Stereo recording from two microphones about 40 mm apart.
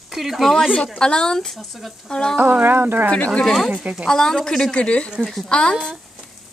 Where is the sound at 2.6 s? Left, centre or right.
Right.